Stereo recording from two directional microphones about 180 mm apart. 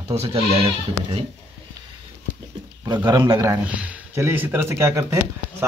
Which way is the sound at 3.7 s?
5° right (ahead or behind).